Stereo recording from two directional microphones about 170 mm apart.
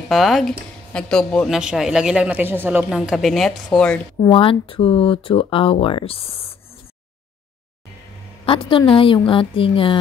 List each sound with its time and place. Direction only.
0.1 s speech: centre (ahead or behind)
4.3 s speech: 30° left (ahead or behind)
8.5 s speech: 30° left (ahead or behind)